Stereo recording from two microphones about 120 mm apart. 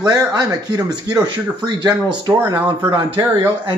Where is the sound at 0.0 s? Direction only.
35° right (ahead or behind).